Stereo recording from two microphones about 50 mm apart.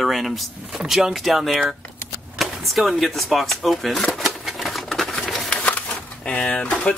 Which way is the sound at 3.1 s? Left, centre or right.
Centre.